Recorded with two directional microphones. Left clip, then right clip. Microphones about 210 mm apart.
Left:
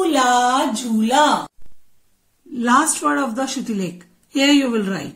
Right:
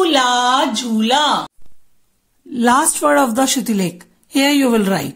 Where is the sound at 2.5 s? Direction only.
45° right (ahead or behind).